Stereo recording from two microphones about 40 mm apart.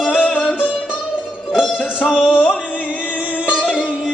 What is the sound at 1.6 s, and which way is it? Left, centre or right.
Music, right.